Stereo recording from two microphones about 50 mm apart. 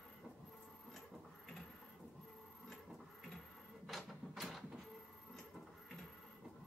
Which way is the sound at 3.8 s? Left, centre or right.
Centre.